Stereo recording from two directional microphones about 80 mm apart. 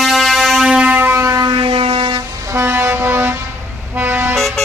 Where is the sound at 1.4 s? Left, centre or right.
Right.